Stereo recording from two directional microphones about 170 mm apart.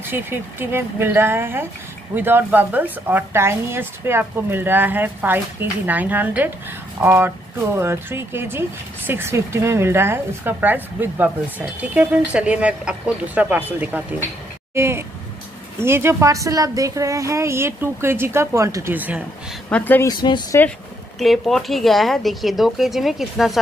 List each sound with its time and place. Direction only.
0.0 s speech: 10° right (ahead or behind)
19.7 s speech: 10° left (ahead or behind)
21.2 s speech: centre (ahead or behind)